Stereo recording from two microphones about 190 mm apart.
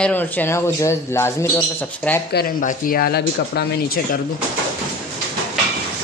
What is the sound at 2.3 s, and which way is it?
Speech, 50° left (ahead or behind).